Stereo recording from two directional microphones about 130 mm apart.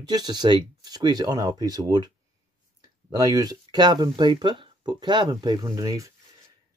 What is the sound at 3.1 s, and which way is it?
Speech, 30° right (ahead or behind).